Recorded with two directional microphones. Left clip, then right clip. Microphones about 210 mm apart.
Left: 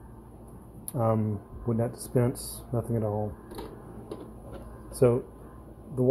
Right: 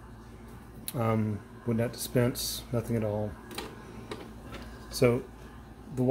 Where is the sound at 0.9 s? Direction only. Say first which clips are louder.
Left 3 dB; 10° right (ahead or behind).